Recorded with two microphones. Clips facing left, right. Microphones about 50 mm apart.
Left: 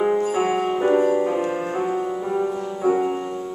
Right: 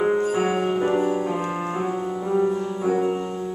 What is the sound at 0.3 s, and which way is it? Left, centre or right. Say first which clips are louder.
Music: left 1 dB; centre.